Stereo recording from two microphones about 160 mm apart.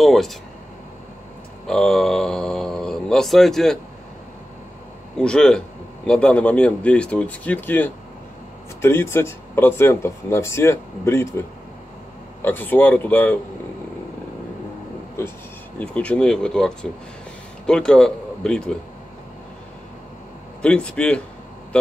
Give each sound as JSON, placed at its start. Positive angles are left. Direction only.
{"t": 0.0, "sound": "a man's voice", "side_deg": 0}
{"t": 1.7, "sound": "speech", "side_deg": 5}
{"t": 5.1, "sound": "a man's voice", "side_deg": 5}
{"t": 12.4, "sound": "speech", "side_deg": 10}
{"t": 15.8, "sound": "a man's voice", "side_deg": 10}
{"t": 20.6, "sound": "speech", "side_deg": 5}